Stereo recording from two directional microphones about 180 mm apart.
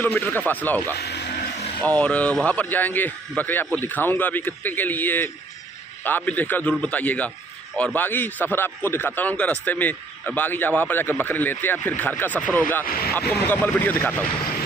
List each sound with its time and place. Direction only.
0.0 s a man's voice: 10° left (ahead or behind)
1.0 s a sound: 60° left (ahead or behind)
1.8 s a man's voice: 5° left (ahead or behind)
12.8 s speech: 55° left (ahead or behind)
13.3 s a man's voice: 10° left (ahead or behind)